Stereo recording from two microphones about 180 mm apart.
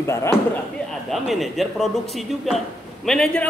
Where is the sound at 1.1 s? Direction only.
Centre (ahead or behind).